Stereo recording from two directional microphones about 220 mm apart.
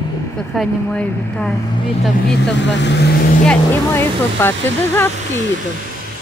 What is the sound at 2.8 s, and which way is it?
Speech, 55° left (ahead or behind).